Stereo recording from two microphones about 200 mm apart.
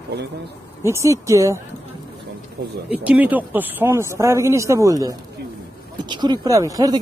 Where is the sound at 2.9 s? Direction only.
5° right (ahead or behind).